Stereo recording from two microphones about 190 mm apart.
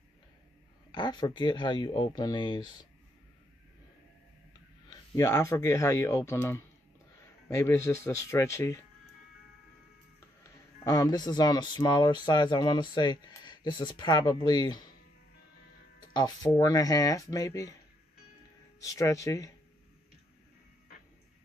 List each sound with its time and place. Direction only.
0.9 s speech: 25° left (ahead or behind)
4.8 s speech: 15° left (ahead or behind)
10.4 s speech: 20° left (ahead or behind)
16.1 s speech: 20° left (ahead or behind)
18.8 s speech: 15° left (ahead or behind)